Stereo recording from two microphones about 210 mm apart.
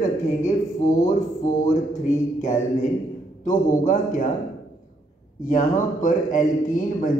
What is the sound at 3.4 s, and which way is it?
Speech, 40° left (ahead or behind).